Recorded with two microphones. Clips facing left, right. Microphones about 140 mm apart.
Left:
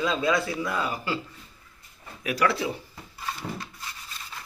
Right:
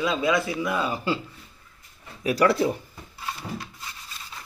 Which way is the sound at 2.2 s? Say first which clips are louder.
Right 5 dB; 35° right (ahead or behind).